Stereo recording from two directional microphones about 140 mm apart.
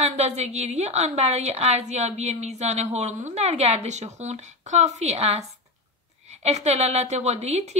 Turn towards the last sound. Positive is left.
turn(degrees=-50)  # may be behind; listen again after turning